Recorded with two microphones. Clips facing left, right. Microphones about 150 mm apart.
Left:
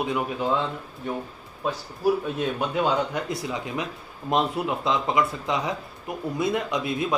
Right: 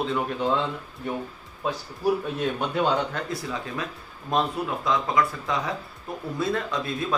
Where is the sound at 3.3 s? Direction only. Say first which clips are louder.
Left 2 dB; 20° left (ahead or behind).